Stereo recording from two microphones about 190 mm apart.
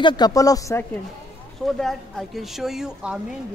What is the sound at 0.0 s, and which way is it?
Speech, 20° left (ahead or behind).